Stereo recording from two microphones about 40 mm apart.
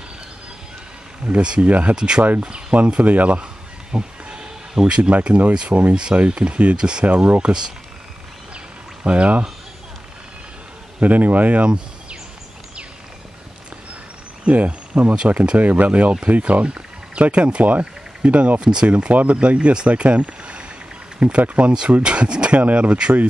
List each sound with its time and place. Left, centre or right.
1.4 s speech: right
1.7 s speech: right
2.0 s speech: right
3.9 s a sound: right
5.2 s speech: right
5.7 s speech: right
9.0 s speech: right
11.0 s speech: right
11.6 s a sound: right
14.4 s speech: right
15.5 s speech: right
18.6 s speech: right
18.9 s speech: right